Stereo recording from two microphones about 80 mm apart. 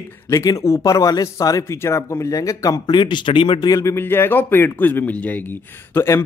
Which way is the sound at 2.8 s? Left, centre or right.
Left.